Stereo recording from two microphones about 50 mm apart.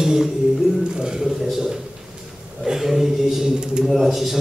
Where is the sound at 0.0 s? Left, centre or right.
Centre.